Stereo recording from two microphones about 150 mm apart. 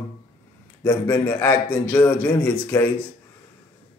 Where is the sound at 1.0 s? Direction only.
15° left (ahead or behind).